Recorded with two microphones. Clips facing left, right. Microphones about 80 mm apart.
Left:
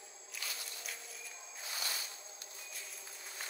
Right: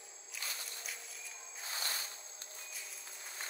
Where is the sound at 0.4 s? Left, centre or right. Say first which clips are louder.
Even; right.